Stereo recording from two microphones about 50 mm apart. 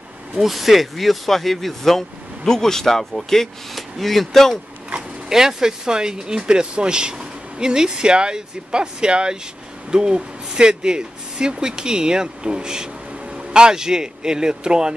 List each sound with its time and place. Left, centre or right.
0.4 s speech: centre
5.3 s speech: centre